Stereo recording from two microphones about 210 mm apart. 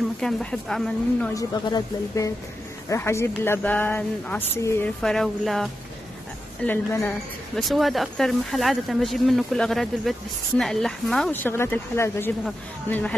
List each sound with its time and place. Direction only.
0.2 s speech: 5° left (ahead or behind)
1.3 s speech: 15° left (ahead or behind)
7.5 s speech: centre (ahead or behind)